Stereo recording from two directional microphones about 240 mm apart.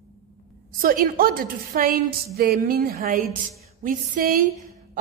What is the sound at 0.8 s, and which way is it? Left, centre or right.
A woman's voice, right.